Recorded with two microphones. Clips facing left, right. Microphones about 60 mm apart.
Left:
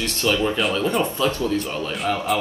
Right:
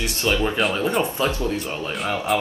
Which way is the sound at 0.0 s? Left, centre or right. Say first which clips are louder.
Left 1 dB; right.